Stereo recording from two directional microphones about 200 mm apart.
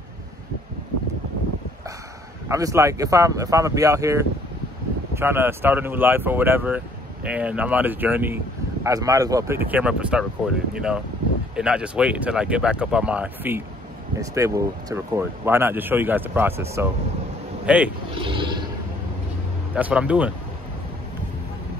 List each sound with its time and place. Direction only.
2.4 s speech: 15° right (ahead or behind)
18.2 s a sound: 25° right (ahead or behind)
19.7 s speech: 5° right (ahead or behind)